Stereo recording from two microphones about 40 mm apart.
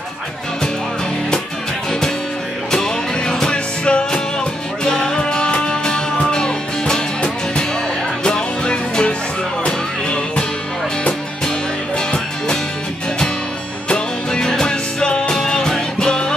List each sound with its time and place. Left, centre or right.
1.9 s music: centre
3.5 s music: left
13.8 s music: left